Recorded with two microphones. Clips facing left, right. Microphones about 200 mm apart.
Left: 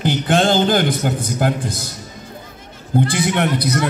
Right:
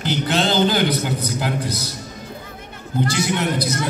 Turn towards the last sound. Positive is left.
turn(degrees=60)  # may be behind; listen again after turning